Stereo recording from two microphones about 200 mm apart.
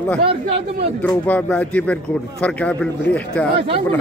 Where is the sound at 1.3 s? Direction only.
5° left (ahead or behind).